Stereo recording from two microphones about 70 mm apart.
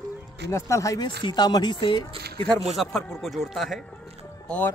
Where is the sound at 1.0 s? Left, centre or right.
Left.